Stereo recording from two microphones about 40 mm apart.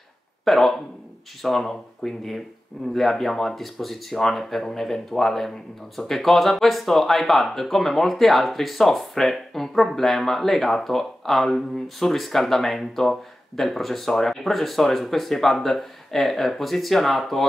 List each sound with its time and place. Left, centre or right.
0.5 s speech: centre